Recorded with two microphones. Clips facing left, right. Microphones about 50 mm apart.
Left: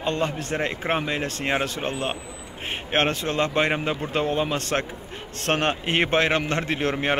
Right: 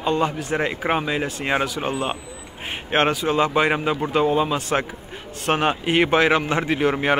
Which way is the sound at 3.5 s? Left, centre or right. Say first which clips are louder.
Right 3 dB; centre.